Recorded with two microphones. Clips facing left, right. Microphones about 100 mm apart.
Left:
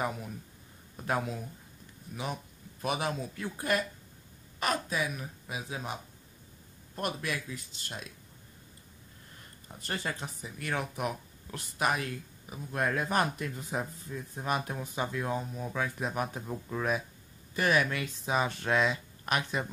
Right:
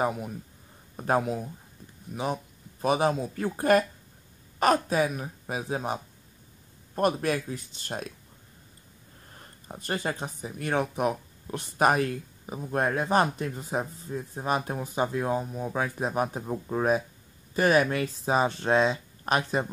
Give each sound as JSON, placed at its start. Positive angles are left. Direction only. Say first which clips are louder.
{"t": 0.9, "sound": "speech", "louder": "right 7 dB", "side_deg": -35}
{"t": 7.0, "sound": "speech", "louder": "right 9 dB", "side_deg": -40}
{"t": 9.7, "sound": "speech", "louder": "right 5 dB", "side_deg": -40}
{"t": 11.0, "sound": "a sound", "louder": "right 7 dB", "side_deg": -35}
{"t": 11.8, "sound": "speech", "louder": "right 7 dB", "side_deg": -45}